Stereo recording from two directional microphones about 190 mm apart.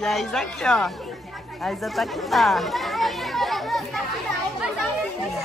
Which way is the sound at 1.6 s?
Centre (ahead or behind).